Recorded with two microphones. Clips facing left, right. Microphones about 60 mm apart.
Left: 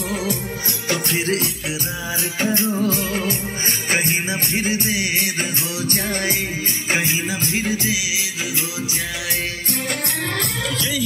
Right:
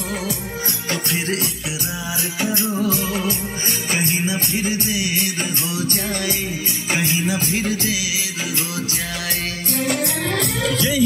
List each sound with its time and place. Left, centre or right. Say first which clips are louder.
2.4 s music: left 1 dB; left
7.1 s music: right 2 dB; left